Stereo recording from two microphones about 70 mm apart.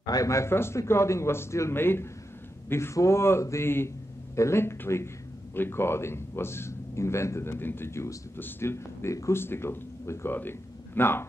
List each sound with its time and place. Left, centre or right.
0.0 s speech: left
0.3 s speech: left
9.4 s speech: left